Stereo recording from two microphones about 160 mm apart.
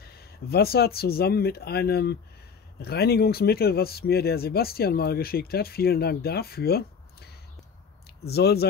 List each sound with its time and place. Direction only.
0.0 s speech: 75° left (ahead or behind)
8.3 s speech: 90° left